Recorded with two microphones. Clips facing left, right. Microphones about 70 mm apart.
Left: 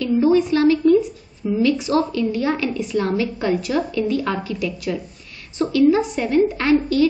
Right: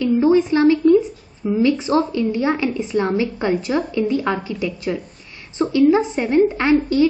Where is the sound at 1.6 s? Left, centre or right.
Right.